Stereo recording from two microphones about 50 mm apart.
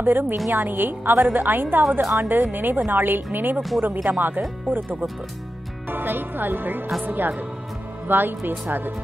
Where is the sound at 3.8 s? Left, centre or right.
Centre.